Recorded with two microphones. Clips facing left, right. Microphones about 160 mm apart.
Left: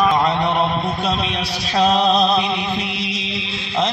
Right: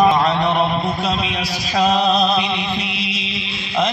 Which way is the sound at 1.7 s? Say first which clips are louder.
Left 1 dB; 30° left (ahead or behind).